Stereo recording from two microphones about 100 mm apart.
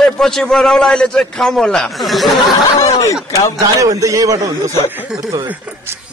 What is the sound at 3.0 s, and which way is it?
Speech, 30° left (ahead or behind).